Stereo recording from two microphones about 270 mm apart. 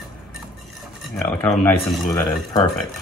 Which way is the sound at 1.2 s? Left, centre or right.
Centre.